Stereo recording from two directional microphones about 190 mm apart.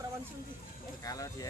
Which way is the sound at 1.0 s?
20° left (ahead or behind).